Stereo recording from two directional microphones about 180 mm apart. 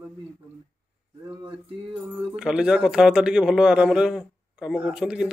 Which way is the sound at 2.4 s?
5° right (ahead or behind).